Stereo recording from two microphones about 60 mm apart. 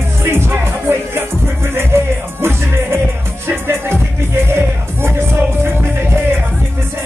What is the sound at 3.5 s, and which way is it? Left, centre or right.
Music, right.